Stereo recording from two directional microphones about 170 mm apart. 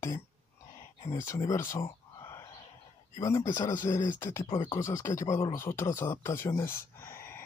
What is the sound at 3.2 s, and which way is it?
Speech, 20° left (ahead or behind).